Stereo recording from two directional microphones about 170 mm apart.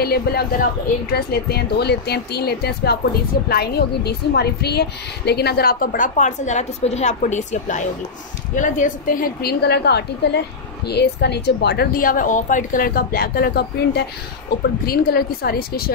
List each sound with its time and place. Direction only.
0.0 s a woman's voice: 65° left (ahead or behind)